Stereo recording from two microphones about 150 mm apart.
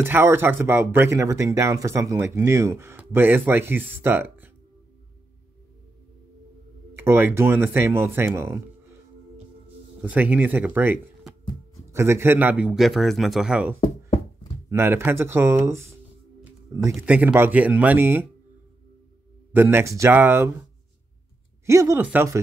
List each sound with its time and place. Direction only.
0.0 s speech: 15° right (ahead or behind)
6.9 s speech: 15° right (ahead or behind)
10.0 s speech: 10° right (ahead or behind)
17.0 s speech: 10° right (ahead or behind)
19.5 s speech: 15° right (ahead or behind)
21.6 s speech: 20° right (ahead or behind)